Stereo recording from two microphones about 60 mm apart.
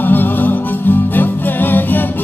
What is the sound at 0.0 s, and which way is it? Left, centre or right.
Music, left.